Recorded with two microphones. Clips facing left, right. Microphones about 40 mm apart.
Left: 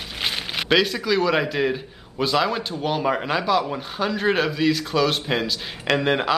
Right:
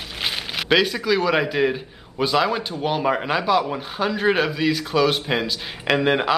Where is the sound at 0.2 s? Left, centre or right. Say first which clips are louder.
Even; centre.